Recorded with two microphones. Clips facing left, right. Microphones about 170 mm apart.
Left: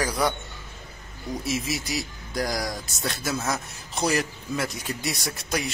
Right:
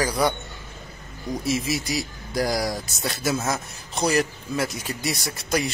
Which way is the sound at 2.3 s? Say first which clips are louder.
Right 4 dB; 5° right (ahead or behind).